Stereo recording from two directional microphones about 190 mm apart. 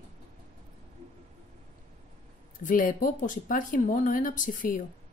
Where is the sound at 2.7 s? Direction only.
45° left (ahead or behind).